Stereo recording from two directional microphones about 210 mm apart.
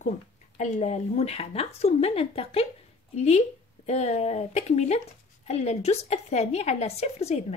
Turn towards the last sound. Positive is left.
turn(degrees=30)  # may be behind; listen again after turning